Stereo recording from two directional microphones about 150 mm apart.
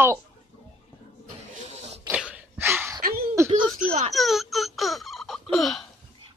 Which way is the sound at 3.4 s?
20° right (ahead or behind).